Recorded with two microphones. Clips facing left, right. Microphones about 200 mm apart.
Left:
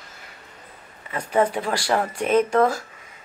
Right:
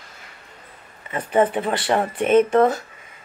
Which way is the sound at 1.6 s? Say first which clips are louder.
Right 2 dB; 25° right (ahead or behind).